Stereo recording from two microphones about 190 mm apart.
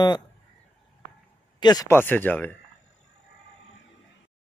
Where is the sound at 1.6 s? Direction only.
20° left (ahead or behind).